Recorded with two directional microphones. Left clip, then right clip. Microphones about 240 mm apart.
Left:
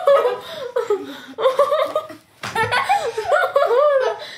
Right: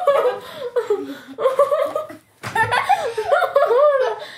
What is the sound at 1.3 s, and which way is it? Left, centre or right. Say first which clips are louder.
Chuckle: even; centre.